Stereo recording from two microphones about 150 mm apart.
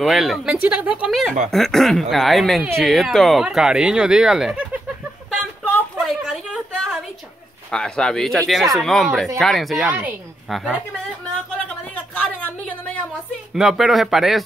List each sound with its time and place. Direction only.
0.0 s speech: centre (ahead or behind)
5.9 s a sound: centre (ahead or behind)
7.7 s speech: 5° left (ahead or behind)
9.8 s speech: 10° right (ahead or behind)
11.9 s a sound: 10° left (ahead or behind)
13.6 s speech: centre (ahead or behind)